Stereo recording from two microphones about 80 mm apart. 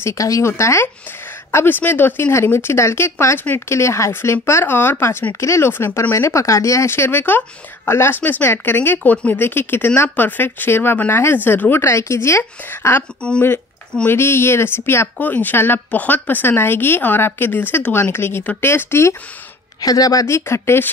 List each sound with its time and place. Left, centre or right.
0.0 s speech: left
6.1 s a woman's voice: left
13.2 s speech: centre
14.0 s speech: left
19.8 s speech: left